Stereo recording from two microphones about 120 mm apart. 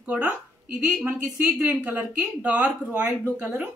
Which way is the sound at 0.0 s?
10° right (ahead or behind).